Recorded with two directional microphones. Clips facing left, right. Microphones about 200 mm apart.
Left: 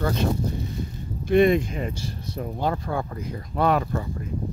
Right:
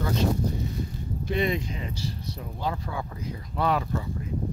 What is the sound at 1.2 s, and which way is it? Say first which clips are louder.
Speech: left 9 dB; 55° left (ahead or behind).